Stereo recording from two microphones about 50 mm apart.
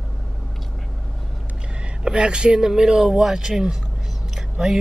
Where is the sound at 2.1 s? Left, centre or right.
Centre.